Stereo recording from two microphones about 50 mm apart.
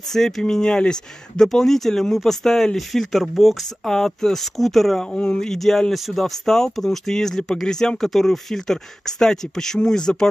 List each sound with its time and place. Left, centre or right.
0.1 s speech: centre
3.9 s speech: centre
5.1 s speech: left
5.4 s speech: centre